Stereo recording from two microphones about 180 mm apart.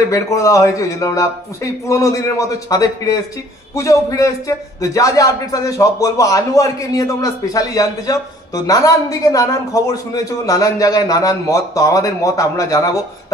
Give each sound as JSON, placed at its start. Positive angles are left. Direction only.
{"t": 0.1, "sound": "a man's voice", "side_deg": 15}